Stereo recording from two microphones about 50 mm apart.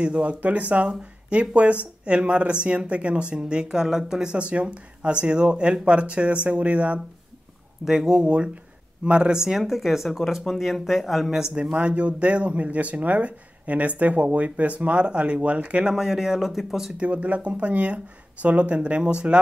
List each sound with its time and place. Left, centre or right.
0.0 s speech: right
4.3 s speech: right
7.8 s speech: centre
9.4 s speech: centre
11.5 s speech: right
15.9 s speech: centre
17.0 s speech: right